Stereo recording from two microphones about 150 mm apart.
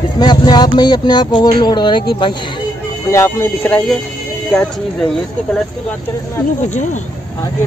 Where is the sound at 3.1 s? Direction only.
15° left (ahead or behind).